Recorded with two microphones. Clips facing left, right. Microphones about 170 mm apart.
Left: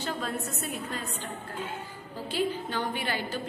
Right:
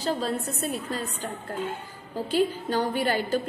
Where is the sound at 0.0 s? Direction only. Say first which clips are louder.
Right 5 dB; 35° right (ahead or behind).